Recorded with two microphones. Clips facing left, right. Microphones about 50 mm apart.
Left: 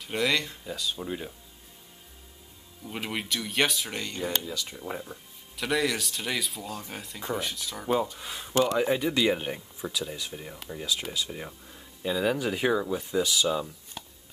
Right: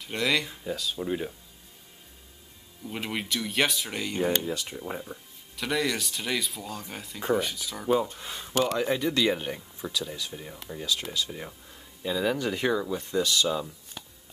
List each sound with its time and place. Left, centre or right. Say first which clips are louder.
0.0 s speech: even; centre
0.4 s speech: right 2 dB; centre
2.8 s speech: right 1 dB; centre
4.4 s speech: right 3 dB; right
4.7 s speech: right 1 dB; centre